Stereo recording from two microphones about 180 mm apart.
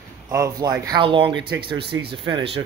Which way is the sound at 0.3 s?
20° right (ahead or behind).